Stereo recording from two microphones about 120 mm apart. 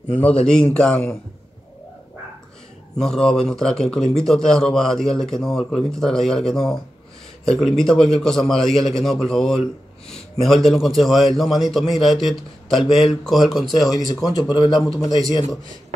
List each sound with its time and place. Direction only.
0.5 s a man's voice: 5° left (ahead or behind)
3.0 s a man's voice: 5° left (ahead or behind)
14.0 s speech: 35° left (ahead or behind)